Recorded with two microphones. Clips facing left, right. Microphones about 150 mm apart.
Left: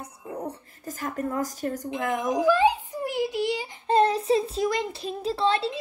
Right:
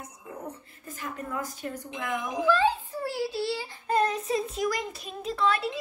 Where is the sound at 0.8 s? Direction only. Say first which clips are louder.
Left 7 dB; 45° left (ahead or behind).